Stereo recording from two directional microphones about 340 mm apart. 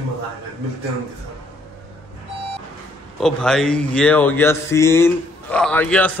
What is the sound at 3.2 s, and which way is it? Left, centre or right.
Speech, centre.